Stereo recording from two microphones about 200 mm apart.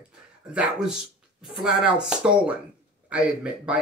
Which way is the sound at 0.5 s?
5° right (ahead or behind).